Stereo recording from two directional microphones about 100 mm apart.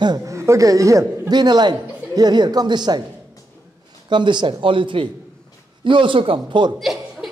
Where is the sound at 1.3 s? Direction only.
45° right (ahead or behind).